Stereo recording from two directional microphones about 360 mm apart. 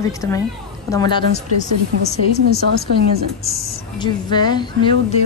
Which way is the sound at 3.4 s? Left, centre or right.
Centre.